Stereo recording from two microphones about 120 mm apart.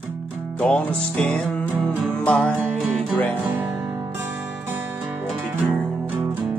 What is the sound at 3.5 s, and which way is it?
Music, 15° right (ahead or behind).